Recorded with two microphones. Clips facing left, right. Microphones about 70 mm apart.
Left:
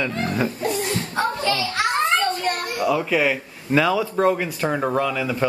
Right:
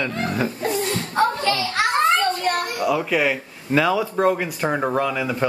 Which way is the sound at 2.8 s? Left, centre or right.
Centre.